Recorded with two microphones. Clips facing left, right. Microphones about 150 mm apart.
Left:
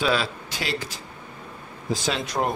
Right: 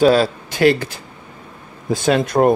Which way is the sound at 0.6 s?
60° right (ahead or behind).